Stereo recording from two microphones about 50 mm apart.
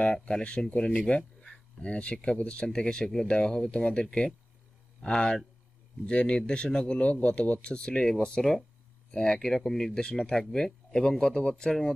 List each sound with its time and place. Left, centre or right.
0.0 s speech: centre
8.4 s speech: centre